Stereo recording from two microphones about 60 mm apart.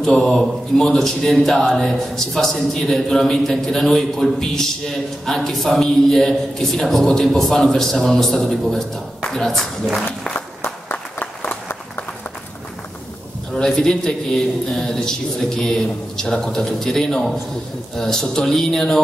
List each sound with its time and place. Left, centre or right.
0.1 s a man's voice: centre
10.6 s applause: left
13.5 s a man's voice: centre